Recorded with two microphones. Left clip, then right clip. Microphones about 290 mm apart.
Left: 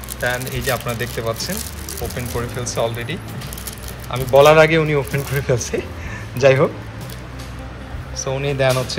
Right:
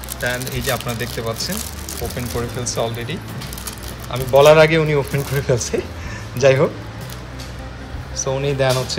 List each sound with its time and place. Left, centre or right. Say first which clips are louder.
0.5 s speech: left 1 dB; centre
8.2 s speech: even; centre